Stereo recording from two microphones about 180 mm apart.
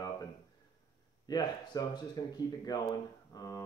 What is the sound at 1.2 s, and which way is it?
Speech, 20° left (ahead or behind).